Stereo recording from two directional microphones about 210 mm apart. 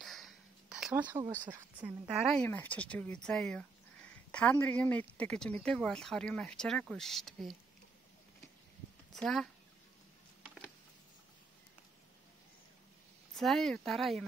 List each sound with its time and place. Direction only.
0.0 s a sound: centre (ahead or behind)
1.1 s speech: 15° right (ahead or behind); by 7.5 s centre (ahead or behind)
9.1 s speech: centre (ahead or behind)
13.3 s speech: centre (ahead or behind)